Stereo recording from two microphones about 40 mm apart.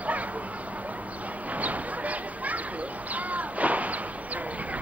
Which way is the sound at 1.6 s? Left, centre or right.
Right.